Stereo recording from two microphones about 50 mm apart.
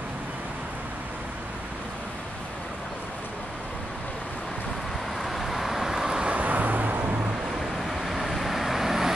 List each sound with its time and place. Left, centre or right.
5.2 s vehicle: centre
6.3 s vehicle: right
7.8 s vehicle: centre